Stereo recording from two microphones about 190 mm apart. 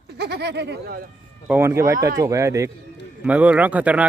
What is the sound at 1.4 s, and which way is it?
Speech, 10° right (ahead or behind).